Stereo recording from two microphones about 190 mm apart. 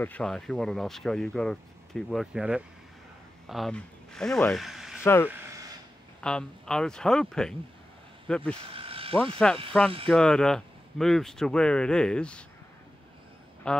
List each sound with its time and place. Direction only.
0.0 s speech: 5° left (ahead or behind)
5.0 s speech: 15° left (ahead or behind)
8.7 s vehicle: 30° right (ahead or behind)
9.1 s speech: 5° left (ahead or behind)
13.7 s speech: 5° left (ahead or behind)